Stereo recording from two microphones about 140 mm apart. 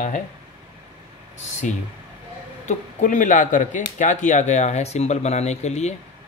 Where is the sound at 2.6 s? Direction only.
60° left (ahead or behind).